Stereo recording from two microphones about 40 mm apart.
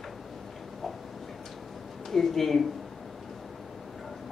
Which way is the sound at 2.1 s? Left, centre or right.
Centre.